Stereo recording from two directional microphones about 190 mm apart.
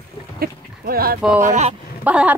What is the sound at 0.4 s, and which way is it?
Speech, 50° right (ahead or behind).